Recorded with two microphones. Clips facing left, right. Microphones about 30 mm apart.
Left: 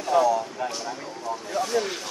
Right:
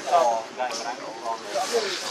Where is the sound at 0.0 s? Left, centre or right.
Right.